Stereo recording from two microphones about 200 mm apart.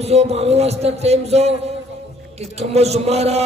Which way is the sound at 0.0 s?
30° right (ahead or behind).